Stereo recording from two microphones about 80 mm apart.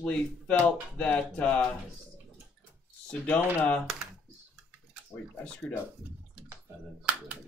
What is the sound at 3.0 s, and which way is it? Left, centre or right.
Speech, centre.